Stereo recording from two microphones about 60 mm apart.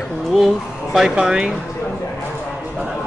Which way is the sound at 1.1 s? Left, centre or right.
Centre.